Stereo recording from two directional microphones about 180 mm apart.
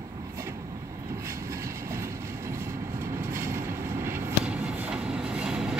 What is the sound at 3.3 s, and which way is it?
Vehicle, 15° right (ahead or behind).